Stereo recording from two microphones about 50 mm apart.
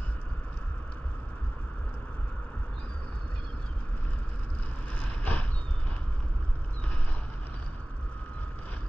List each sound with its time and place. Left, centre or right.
4.9 s vehicle: left